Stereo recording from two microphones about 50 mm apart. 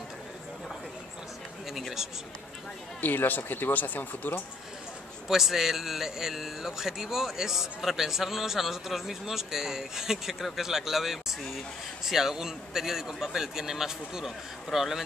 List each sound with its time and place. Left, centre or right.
1.7 s a sound: centre
3.0 s speech: left
5.3 s a man's voice: centre